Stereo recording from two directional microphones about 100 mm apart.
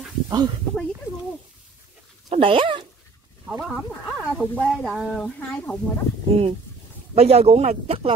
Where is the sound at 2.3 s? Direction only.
60° right (ahead or behind).